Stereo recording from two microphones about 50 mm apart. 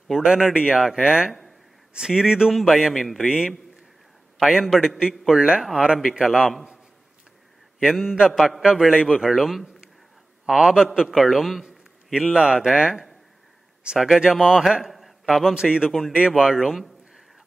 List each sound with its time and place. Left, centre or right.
0.1 s speech: centre
2.5 s a man's voice: centre
3.3 s speech: centre
4.4 s speech: centre
7.8 s a man's voice: centre
8.5 s speech: centre
9.3 s a man's voice: centre